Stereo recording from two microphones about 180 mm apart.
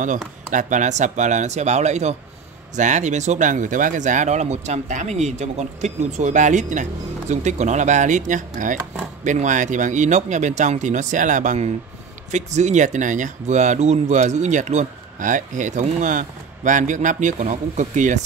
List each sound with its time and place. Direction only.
0.5 s speech: 45° right (ahead or behind)